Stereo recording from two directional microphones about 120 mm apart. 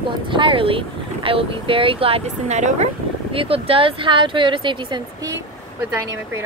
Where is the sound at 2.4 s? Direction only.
75° right (ahead or behind).